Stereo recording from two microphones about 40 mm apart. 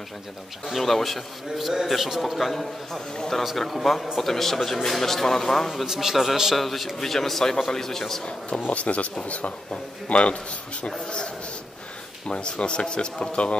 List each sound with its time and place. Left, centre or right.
0.7 s a man's voice: centre
5.9 s a man's voice: centre
6.5 s a man's voice: centre
8.5 s a man's voice: left
12.3 s a man's voice: left